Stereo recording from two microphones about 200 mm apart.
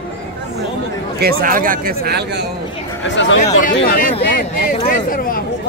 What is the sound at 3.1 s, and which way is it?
Speech, 70° left (ahead or behind).